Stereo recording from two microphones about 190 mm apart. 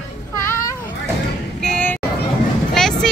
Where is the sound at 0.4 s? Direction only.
15° left (ahead or behind).